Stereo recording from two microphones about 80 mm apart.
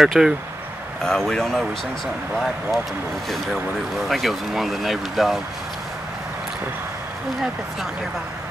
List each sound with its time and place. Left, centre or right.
0.0 s speech: centre
1.0 s speech: centre
4.1 s speech: centre